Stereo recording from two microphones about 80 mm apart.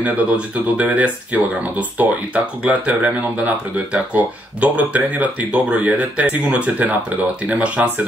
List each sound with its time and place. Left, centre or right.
0.0 s speech: centre